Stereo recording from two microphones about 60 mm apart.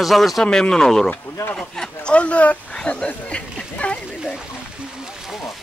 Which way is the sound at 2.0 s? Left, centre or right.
Left.